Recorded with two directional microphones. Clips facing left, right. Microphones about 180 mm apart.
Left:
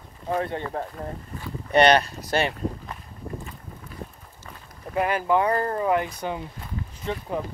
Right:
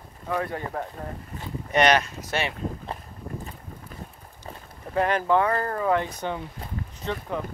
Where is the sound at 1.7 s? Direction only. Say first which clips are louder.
Left 3 dB; 35° left (ahead or behind).